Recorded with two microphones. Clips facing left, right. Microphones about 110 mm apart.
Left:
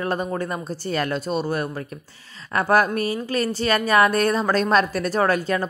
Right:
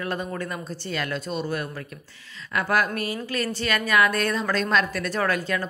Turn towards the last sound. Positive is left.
turn(degrees=30)  # may be behind; listen again after turning